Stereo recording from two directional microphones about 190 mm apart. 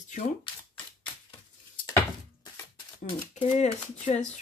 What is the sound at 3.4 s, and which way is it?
Speech, 30° left (ahead or behind).